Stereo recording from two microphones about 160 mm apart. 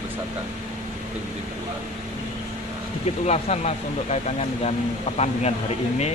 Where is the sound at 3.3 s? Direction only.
45° left (ahead or behind).